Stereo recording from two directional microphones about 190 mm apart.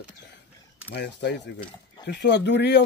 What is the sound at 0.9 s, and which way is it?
Speech, 65° left (ahead or behind).